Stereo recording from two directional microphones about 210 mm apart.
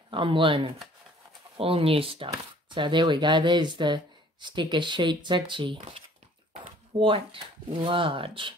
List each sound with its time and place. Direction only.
0.1 s speech: 25° right (ahead or behind)